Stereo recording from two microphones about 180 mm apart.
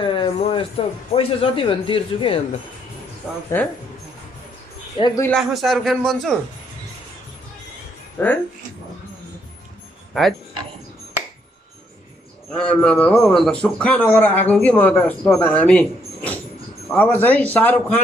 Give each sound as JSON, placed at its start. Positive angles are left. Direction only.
{"t": 0.0, "sound": "speech", "side_deg": 30}
{"t": 3.5, "sound": "speech", "side_deg": 10}
{"t": 4.9, "sound": "a man's voice", "side_deg": 25}
{"t": 5.4, "sound": "a man's voice", "side_deg": 0}
{"t": 8.2, "sound": "speech", "side_deg": 10}
{"t": 12.5, "sound": "a man's voice", "side_deg": 5}